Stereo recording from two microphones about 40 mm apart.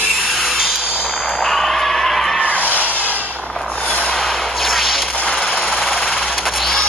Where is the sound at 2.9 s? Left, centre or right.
Left.